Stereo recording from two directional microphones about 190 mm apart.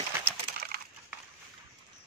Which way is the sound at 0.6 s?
55° right (ahead or behind).